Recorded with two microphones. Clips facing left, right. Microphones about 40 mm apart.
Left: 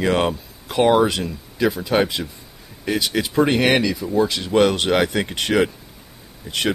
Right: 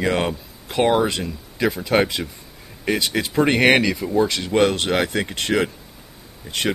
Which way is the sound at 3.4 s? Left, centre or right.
Right.